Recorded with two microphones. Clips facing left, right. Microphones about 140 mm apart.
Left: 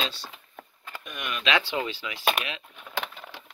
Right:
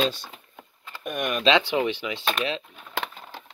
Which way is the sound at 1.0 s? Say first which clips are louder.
Right 8 dB; 50° right (ahead or behind).